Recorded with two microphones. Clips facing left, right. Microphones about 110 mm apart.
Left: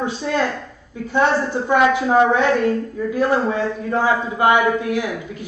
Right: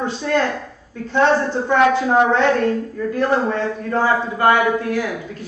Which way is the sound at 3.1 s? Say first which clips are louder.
Even; 10° left (ahead or behind).